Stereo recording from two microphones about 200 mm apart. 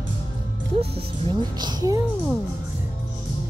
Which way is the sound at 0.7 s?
30° right (ahead or behind).